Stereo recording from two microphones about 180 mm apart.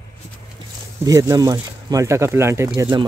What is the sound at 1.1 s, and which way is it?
Speech, 20° right (ahead or behind).